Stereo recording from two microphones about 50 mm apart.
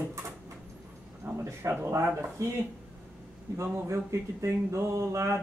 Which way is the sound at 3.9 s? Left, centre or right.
Right.